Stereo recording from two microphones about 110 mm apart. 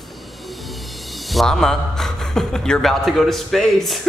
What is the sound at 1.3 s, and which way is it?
A man's voice, 5° left (ahead or behind).